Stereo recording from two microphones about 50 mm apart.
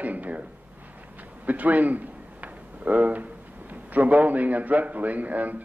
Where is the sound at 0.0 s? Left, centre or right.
Right.